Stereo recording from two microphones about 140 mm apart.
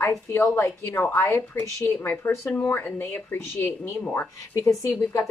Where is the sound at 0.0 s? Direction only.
20° left (ahead or behind).